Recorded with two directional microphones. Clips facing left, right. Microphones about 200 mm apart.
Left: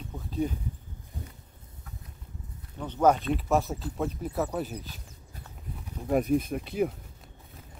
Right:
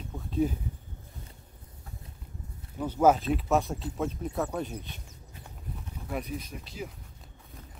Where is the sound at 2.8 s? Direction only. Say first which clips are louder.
Right 1 dB; 5° right (ahead or behind).